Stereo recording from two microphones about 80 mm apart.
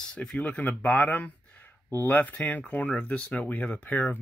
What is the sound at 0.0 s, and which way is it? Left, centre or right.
Speech, centre.